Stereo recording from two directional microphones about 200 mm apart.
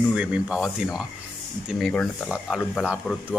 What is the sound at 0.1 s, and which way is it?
Speech, 5° right (ahead or behind).